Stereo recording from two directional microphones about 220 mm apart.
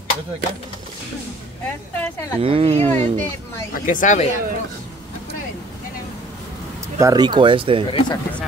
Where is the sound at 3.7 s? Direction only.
35° left (ahead or behind).